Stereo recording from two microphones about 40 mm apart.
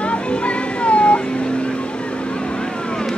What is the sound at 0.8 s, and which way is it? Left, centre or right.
Cat, left.